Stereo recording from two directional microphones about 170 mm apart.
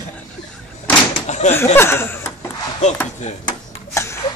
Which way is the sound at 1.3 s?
40° left (ahead or behind).